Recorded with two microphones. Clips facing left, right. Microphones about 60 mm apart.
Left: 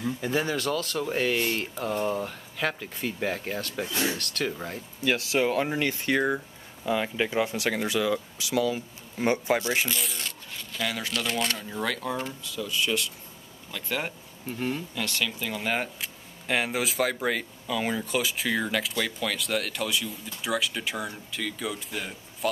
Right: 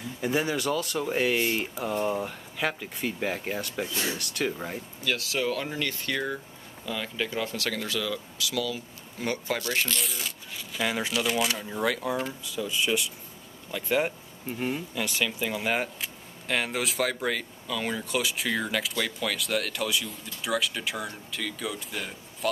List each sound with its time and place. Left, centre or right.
0.2 s speech: centre
5.0 s speech: left
9.9 s speech: centre
12.6 s speech: centre